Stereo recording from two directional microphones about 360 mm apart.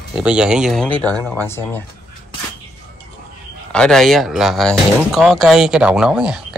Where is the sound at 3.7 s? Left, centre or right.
Centre.